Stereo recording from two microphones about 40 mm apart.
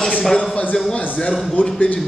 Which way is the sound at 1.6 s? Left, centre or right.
Left.